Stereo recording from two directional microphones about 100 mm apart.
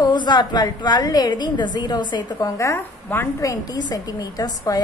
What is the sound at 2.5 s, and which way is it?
Speech, 30° left (ahead or behind).